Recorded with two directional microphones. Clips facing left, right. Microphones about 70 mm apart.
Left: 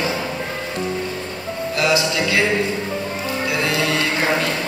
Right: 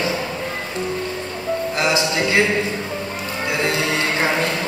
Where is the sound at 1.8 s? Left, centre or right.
Right.